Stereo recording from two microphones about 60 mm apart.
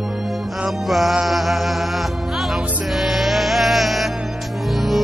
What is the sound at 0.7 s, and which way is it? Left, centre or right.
Music, centre.